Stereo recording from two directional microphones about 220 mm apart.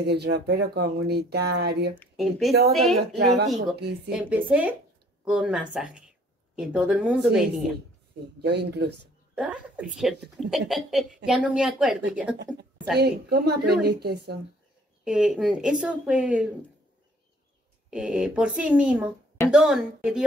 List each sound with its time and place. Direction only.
0.0 s speech: 50° right (ahead or behind)
2.0 s speech: centre (ahead or behind)
3.7 s speech: 45° right (ahead or behind)
4.1 s speech: 5° right (ahead or behind)
8.4 s speech: 50° right (ahead or behind)
9.3 s speech: 5° right (ahead or behind)
12.9 s speech: 45° right (ahead or behind)
15.0 s speech: 5° right (ahead or behind)
17.8 s speech: 5° right (ahead or behind)